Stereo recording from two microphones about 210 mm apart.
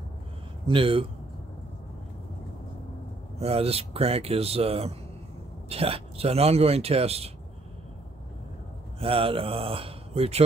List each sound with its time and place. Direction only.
0.7 s speech: 25° right (ahead or behind)
3.3 s speech: 30° right (ahead or behind)
9.0 s speech: 25° right (ahead or behind)